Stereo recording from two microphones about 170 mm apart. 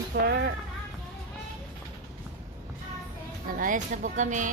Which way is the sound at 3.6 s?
50° right (ahead or behind).